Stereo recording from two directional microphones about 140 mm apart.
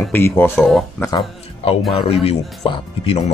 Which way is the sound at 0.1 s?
15° left (ahead or behind).